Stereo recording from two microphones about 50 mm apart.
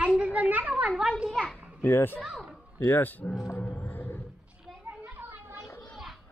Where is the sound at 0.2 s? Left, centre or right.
Right.